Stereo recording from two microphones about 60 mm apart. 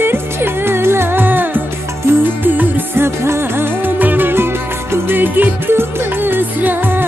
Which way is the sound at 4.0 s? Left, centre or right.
Right.